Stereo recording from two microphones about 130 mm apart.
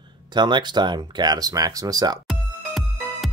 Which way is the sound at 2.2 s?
Centre (ahead or behind).